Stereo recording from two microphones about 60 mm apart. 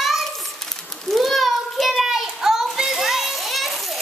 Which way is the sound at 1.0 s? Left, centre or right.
Centre.